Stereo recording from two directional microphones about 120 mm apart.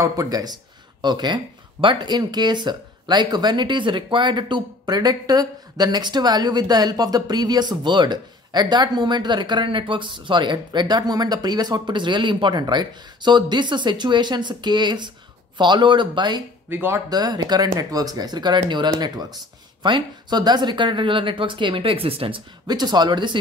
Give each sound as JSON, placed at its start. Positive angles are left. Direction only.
{"t": 0.0, "sound": "speech", "side_deg": -30}
{"t": 16.6, "sound": "speech", "side_deg": -20}
{"t": 17.1, "sound": "speech", "side_deg": -35}
{"t": 22.7, "sound": "speech", "side_deg": -35}